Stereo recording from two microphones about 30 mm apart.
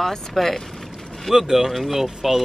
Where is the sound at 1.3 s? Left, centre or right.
Centre.